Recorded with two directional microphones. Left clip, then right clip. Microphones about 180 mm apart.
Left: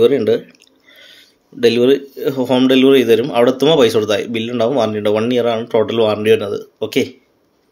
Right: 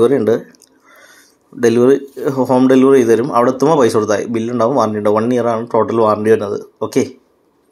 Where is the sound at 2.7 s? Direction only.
15° left (ahead or behind).